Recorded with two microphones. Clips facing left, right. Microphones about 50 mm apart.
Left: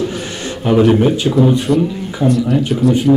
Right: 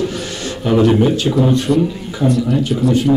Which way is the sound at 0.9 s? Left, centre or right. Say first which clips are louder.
Left 1 dB; centre.